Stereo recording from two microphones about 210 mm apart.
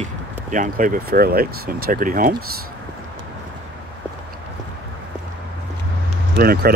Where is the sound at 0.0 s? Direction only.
40° right (ahead or behind).